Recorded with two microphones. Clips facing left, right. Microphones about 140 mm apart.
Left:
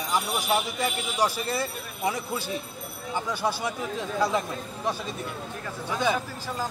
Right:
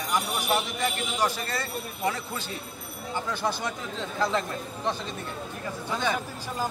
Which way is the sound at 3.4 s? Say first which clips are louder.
Left 2 dB; 10° left (ahead or behind).